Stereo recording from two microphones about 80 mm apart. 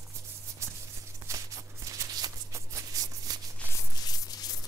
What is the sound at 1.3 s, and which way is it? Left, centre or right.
Shuffle, right.